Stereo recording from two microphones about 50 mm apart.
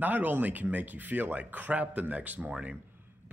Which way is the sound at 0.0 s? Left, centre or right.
Right.